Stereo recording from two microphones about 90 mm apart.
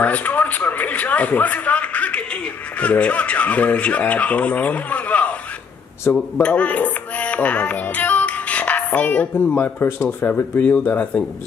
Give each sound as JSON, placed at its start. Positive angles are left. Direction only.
{"t": 0.0, "sound": "a sound", "side_deg": 15}
{"t": 2.8, "sound": "speech", "side_deg": 15}
{"t": 6.4, "sound": "music", "side_deg": 15}
{"t": 10.2, "sound": "speech", "side_deg": 20}